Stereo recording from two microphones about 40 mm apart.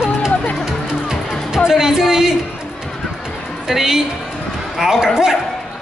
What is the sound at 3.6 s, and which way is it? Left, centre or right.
A woman's voice, centre.